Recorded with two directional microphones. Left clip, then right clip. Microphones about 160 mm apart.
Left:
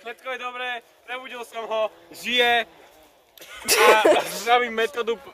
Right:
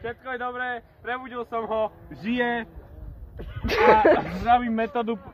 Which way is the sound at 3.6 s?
20° left (ahead or behind).